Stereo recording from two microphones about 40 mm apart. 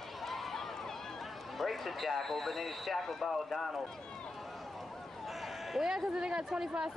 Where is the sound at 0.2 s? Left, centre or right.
Centre.